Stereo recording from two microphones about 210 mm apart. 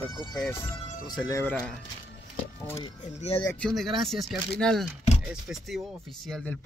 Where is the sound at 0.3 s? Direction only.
5° left (ahead or behind).